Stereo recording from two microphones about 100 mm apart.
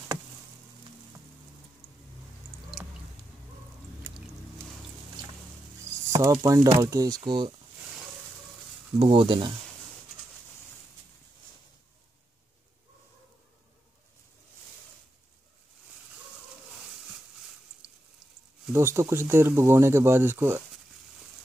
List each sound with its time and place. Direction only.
6.0 s a sound: 35° right (ahead or behind)
6.4 s speech: 35° right (ahead or behind)
9.0 s speech: 60° right (ahead or behind)
18.7 s speech: 25° right (ahead or behind)